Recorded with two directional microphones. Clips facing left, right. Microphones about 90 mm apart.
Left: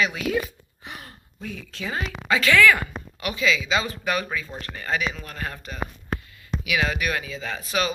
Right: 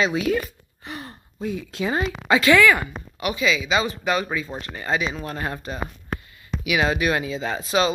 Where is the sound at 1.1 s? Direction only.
20° right (ahead or behind).